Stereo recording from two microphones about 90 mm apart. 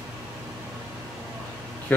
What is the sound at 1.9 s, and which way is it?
Speech, 20° left (ahead or behind).